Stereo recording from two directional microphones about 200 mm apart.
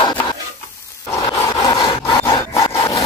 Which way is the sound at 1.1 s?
20° left (ahead or behind).